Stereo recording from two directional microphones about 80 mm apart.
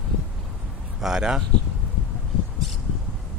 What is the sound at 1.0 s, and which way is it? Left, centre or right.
Speech, centre.